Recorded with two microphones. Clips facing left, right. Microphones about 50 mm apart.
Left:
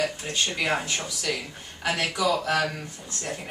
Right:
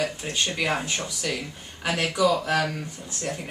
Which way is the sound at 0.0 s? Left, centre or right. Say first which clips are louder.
Even; centre.